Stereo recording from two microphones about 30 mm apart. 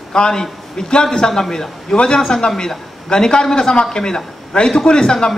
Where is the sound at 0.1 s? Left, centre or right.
Left.